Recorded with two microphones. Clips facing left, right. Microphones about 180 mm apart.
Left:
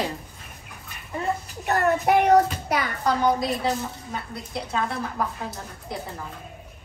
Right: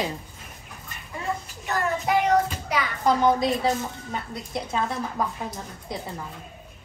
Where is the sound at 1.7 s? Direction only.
60° left (ahead or behind).